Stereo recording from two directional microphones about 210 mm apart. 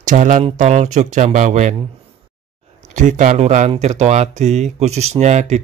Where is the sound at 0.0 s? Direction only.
35° right (ahead or behind).